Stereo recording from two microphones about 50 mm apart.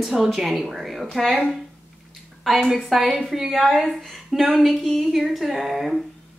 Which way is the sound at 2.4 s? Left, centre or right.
Centre.